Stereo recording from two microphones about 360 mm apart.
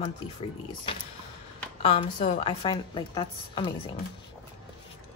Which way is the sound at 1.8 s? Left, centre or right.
Centre.